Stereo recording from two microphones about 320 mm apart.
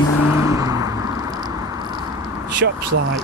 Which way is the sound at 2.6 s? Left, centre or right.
Right.